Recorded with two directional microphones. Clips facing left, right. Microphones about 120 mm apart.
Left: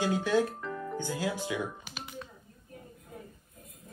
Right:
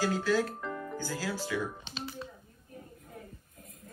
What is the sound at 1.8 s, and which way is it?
Typing, 25° right (ahead or behind).